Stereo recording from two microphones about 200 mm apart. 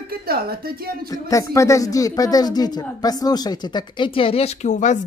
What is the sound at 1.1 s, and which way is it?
Speech, 15° left (ahead or behind).